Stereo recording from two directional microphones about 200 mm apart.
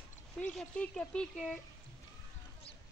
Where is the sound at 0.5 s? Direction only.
5° left (ahead or behind).